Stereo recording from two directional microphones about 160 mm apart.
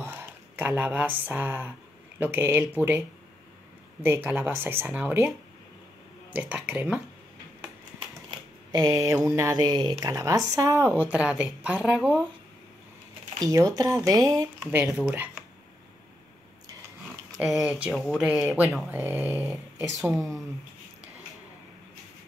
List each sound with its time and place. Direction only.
0.0 s speech: 15° right (ahead or behind)
4.0 s speech: 15° right (ahead or behind)
6.3 s speech: 10° right (ahead or behind)
8.3 s speech: 25° right (ahead or behind); by 12.2 s 5° right (ahead or behind)
13.4 s speech: 20° right (ahead or behind)
17.6 s speech: 10° right (ahead or behind)
20.0 s speech: centre (ahead or behind)